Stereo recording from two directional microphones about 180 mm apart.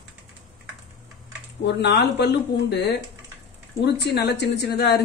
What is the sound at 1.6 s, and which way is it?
Speech, 70° left (ahead or behind).